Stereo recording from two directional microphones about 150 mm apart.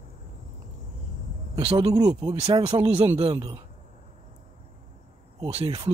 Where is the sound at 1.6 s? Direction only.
40° right (ahead or behind).